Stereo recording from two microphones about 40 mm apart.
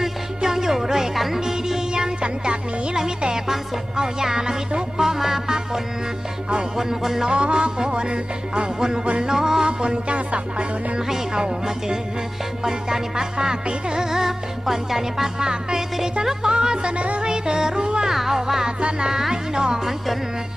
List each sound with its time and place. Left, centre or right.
0.0 s music: centre
6.8 s music: centre
7.2 s music: right
9.0 s music: right
9.3 s music: centre
9.7 s music: right
11.1 s music: centre
18.1 s music: centre
18.8 s music: right